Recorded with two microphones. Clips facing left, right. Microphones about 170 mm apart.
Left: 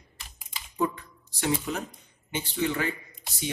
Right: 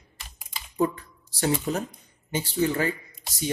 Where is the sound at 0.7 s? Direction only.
35° right (ahead or behind).